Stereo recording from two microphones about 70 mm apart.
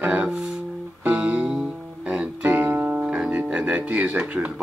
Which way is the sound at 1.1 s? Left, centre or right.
Centre.